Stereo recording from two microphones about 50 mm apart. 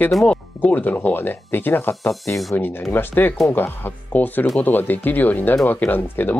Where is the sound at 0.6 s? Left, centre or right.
Left.